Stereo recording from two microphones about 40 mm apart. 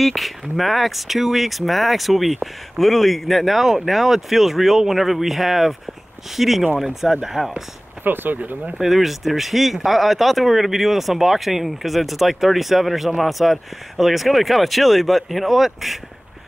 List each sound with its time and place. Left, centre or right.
0.0 s speech: centre
8.0 s speech: right
8.8 s speech: centre